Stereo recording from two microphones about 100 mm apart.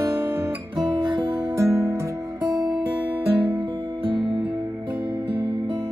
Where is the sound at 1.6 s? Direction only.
30° right (ahead or behind).